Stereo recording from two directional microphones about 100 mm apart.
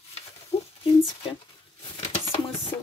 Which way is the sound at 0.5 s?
90° left.